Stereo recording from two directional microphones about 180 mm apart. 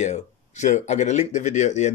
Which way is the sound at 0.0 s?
40° left (ahead or behind).